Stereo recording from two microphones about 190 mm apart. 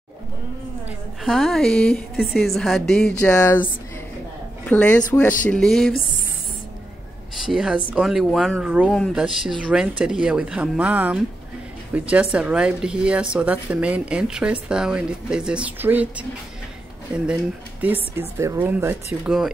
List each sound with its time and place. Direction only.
0.8 s speech: centre (ahead or behind)
4.6 s speech: 5° left (ahead or behind)
7.3 s speech: centre (ahead or behind)